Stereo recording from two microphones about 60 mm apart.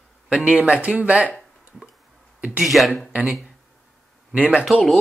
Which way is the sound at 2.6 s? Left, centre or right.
Centre.